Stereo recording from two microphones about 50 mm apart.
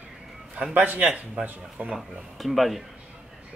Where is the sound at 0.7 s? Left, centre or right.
Right.